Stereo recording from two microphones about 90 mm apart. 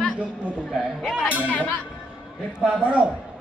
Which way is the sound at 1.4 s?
20° left (ahead or behind).